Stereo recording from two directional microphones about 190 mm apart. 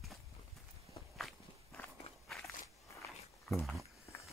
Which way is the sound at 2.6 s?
15° left (ahead or behind).